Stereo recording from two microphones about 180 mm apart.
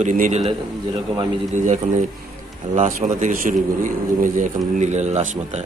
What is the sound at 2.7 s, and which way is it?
A man's voice, 45° right (ahead or behind).